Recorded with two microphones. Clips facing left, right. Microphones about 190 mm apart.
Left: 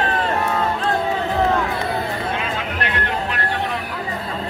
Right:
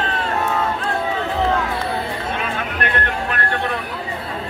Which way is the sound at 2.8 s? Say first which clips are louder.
Right 2 dB; 55° right (ahead or behind).